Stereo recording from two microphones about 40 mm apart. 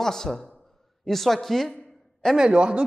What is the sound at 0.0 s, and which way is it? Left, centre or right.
A man's voice, centre.